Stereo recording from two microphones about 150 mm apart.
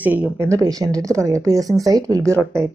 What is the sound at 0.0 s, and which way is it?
Speech, 10° right (ahead or behind).